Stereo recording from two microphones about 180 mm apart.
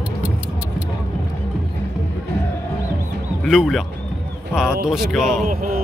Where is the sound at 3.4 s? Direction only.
Centre (ahead or behind).